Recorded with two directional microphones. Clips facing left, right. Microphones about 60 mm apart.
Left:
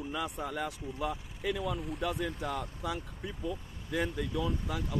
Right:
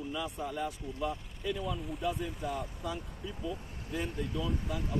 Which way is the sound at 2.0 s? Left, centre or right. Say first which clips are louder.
Left 1 dB; left.